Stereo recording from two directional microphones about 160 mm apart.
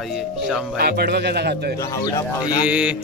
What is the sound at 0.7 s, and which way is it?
Speech, 75° right (ahead or behind).